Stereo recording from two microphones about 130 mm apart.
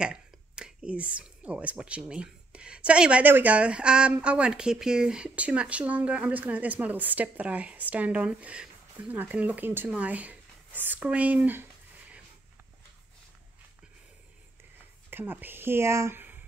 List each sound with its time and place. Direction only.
0.0 s speech: 5° right (ahead or behind)
15.0 s speech: 15° right (ahead or behind)